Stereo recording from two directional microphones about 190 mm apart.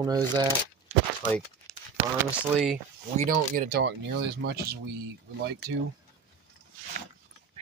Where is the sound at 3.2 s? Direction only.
45° right (ahead or behind).